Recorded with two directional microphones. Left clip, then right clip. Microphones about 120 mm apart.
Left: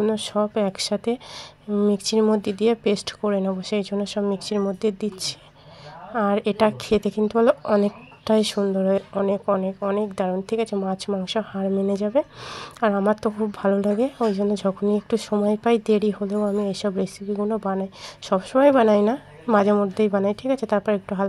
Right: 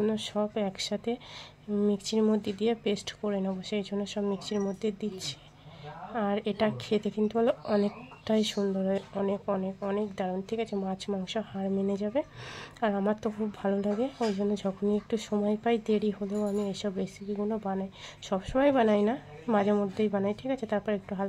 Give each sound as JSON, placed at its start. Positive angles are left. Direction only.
{"t": 0.0, "sound": "a woman's voice", "side_deg": 25}
{"t": 7.6, "sound": "a woman's voice", "side_deg": 20}
{"t": 8.3, "sound": "a woman's voice", "side_deg": 30}